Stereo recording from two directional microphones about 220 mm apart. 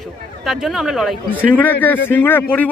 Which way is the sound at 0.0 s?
Centre (ahead or behind).